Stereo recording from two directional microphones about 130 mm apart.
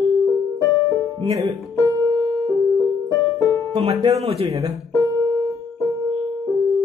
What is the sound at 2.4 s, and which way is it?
Music, 25° left (ahead or behind).